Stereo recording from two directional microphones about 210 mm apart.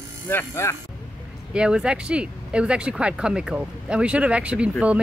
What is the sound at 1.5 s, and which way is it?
Speech, 5° right (ahead or behind).